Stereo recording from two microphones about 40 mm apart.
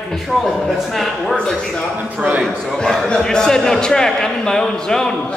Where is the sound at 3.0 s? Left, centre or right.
Centre.